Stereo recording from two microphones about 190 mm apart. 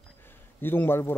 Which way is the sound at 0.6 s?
10° left (ahead or behind).